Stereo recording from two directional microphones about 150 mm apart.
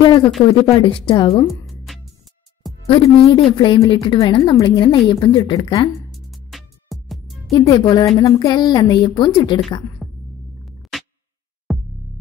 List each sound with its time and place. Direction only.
0.0 s a woman's voice: 30° left (ahead or behind)
2.9 s a woman's voice: 35° left (ahead or behind)
6.3 s music: centre (ahead or behind)
7.5 s a woman's voice: 30° left (ahead or behind)
10.0 s a sound: centre (ahead or behind)
10.6 s music: centre (ahead or behind)